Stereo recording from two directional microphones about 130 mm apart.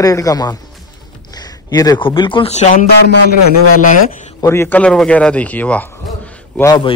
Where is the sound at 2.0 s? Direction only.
40° left (ahead or behind).